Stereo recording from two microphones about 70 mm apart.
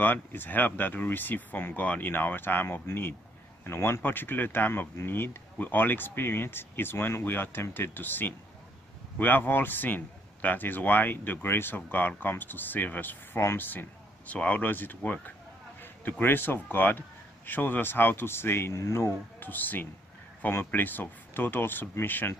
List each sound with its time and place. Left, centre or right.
0.0 s a man's voice: left
19.4 s a man's voice: left